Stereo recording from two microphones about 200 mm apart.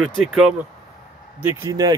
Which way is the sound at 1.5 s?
15° right (ahead or behind).